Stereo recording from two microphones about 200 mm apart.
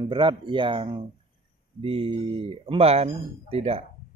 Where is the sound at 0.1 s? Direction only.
25° right (ahead or behind).